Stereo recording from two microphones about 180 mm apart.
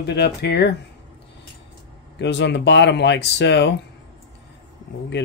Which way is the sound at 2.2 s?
75° left (ahead or behind).